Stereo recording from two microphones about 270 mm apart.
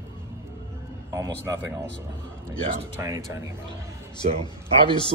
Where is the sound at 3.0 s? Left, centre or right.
Centre.